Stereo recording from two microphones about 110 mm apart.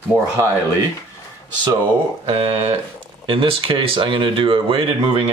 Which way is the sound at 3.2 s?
50° right (ahead or behind).